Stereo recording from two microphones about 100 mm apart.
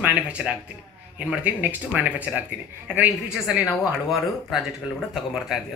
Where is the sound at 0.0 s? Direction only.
10° right (ahead or behind).